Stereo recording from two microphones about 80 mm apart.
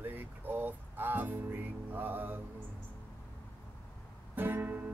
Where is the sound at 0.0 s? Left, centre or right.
Right.